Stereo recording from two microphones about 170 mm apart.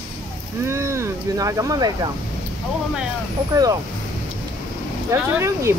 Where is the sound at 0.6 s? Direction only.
15° right (ahead or behind).